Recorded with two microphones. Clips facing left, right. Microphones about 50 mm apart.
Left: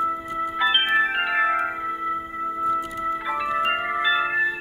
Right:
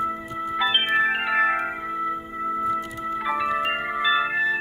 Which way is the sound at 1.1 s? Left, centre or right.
Centre.